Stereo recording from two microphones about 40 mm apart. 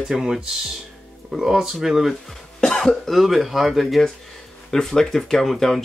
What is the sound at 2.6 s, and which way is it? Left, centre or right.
Cough, centre.